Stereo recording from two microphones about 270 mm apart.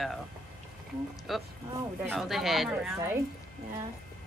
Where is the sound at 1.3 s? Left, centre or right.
Centre.